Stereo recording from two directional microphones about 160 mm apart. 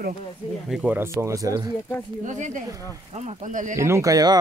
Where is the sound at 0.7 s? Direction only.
5° right (ahead or behind).